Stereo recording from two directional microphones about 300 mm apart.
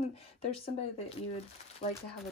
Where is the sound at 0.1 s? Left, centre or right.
Centre.